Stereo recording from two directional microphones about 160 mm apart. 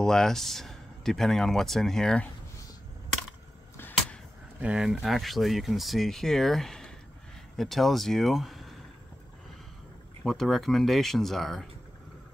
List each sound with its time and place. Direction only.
0.0 s speech: 5° left (ahead or behind)
3.7 s a sound: 10° left (ahead or behind)
4.6 s speech: 5° right (ahead or behind)
10.2 s speech: centre (ahead or behind)